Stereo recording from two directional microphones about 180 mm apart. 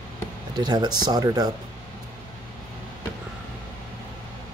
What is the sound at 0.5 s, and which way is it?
Speech, 25° right (ahead or behind).